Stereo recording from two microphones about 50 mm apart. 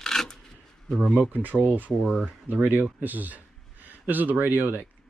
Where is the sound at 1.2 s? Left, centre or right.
Right.